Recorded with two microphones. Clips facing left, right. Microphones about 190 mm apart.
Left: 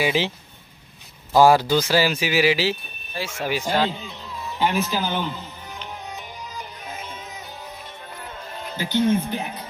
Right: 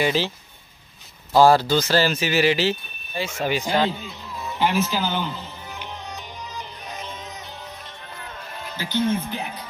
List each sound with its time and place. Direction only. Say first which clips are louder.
0.0 s speech: even; 15° left (ahead or behind)
1.3 s speech: even; 10° left (ahead or behind)
7.0 s music: right 1 dB; 5° left (ahead or behind)
8.7 s speech: left 3 dB; 15° left (ahead or behind)